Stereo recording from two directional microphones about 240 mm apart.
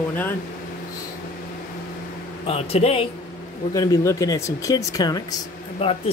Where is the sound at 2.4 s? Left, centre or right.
Left.